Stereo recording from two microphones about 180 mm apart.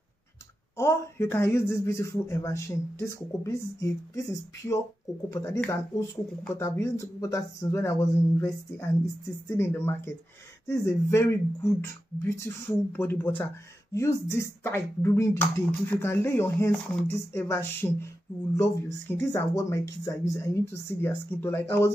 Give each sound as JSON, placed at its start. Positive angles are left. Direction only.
{"t": 0.7, "sound": "speech", "side_deg": 15}